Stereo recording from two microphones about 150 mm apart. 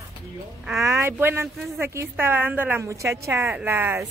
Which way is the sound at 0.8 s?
20° right (ahead or behind).